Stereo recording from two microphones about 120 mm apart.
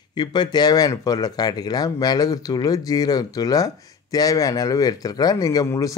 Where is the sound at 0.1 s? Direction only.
40° left (ahead or behind).